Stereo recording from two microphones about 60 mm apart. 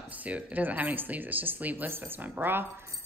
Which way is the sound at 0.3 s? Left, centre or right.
Right.